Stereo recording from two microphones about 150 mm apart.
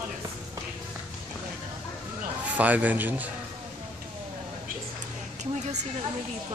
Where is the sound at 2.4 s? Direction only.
10° right (ahead or behind).